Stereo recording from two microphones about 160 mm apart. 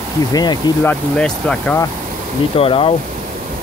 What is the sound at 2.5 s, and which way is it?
Speech, 35° left (ahead or behind).